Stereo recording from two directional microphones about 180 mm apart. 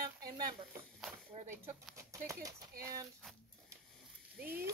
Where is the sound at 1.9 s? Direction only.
15° right (ahead or behind).